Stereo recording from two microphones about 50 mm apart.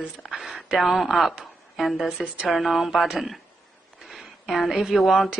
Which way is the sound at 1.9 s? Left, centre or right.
Centre.